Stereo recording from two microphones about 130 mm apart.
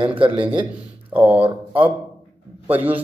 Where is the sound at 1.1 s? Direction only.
15° right (ahead or behind).